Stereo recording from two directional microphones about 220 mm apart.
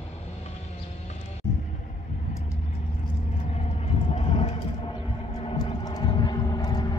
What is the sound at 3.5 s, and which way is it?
Vehicle, 30° left (ahead or behind).